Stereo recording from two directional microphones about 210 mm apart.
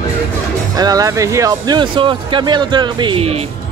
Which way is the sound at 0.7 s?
15° right (ahead or behind).